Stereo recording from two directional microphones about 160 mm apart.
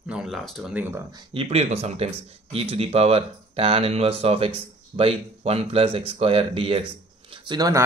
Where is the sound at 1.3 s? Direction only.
40° right (ahead or behind).